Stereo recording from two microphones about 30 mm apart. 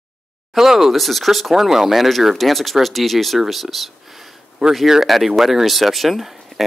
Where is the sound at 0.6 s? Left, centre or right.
Centre.